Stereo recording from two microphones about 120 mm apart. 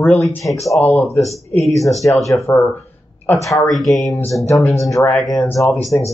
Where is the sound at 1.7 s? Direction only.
25° left (ahead or behind).